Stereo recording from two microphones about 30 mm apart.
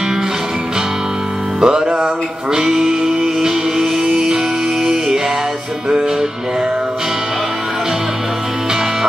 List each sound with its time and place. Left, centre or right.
1.6 s music: right
2.7 s music: centre